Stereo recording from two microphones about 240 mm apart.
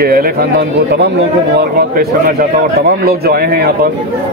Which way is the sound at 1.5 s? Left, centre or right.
Right.